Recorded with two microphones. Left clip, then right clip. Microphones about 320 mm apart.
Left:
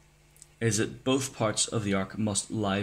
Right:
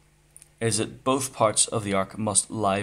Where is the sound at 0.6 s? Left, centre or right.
Centre.